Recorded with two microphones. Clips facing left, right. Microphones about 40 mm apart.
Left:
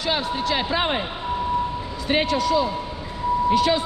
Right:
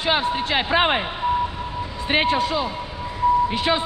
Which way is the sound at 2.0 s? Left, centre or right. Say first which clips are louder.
Right 1 dB; right.